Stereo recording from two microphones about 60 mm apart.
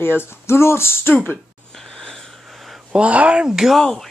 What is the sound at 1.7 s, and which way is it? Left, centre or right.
Wheeze, centre.